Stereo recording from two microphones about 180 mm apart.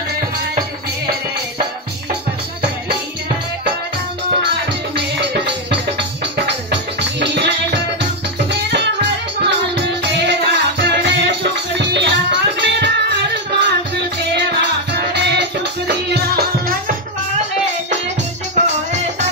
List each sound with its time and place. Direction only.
4.9 s music: 70° right (ahead or behind)
14.9 s music: 70° right (ahead or behind)
18.5 s music: 40° right (ahead or behind)